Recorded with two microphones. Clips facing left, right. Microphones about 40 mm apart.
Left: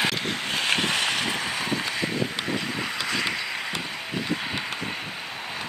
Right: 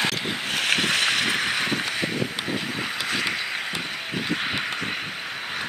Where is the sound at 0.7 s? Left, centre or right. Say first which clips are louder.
Right 5 dB; right.